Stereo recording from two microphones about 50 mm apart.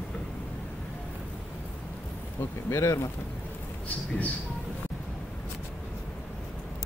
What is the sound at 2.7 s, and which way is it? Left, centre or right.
Speech, left.